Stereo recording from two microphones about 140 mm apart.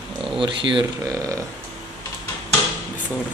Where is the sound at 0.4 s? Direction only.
35° right (ahead or behind).